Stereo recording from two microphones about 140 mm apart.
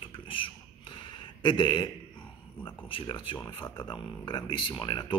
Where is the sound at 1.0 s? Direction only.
35° left (ahead or behind).